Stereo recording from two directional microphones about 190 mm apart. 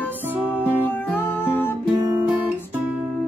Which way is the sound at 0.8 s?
10° left (ahead or behind).